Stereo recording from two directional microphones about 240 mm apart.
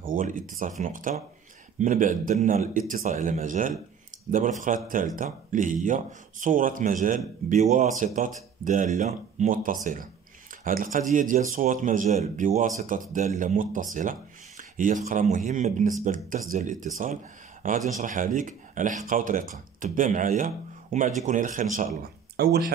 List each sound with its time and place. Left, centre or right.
0.0 s speech: right
22.4 s speech: right